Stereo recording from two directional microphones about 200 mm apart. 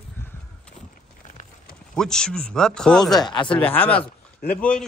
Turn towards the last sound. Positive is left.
turn(degrees=5)  # may be behind; listen again after turning